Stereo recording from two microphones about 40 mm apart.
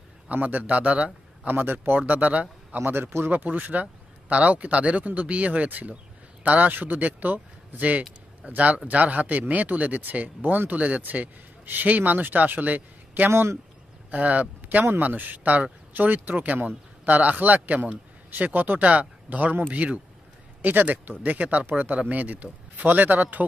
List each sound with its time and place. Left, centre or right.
0.3 s a man's voice: right
1.5 s speech: right
2.8 s a man's voice: right
3.4 s speech: right
11.0 s a man's voice: right
20.6 s speech: right
21.1 s speech: right